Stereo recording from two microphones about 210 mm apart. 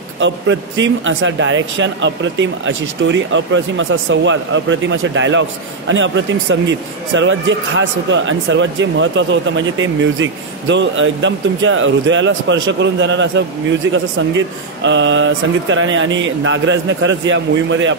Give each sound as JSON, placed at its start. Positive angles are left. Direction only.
{"t": 0.2, "sound": "speech", "side_deg": -60}